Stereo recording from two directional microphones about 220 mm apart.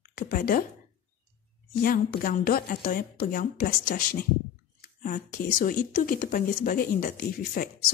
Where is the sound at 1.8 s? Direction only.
40° left (ahead or behind).